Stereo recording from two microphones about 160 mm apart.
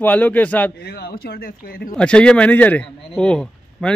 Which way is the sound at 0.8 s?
80° left.